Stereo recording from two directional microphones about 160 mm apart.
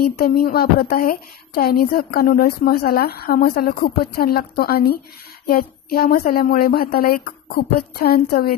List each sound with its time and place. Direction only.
0.2 s a woman's voice: 70° left (ahead or behind)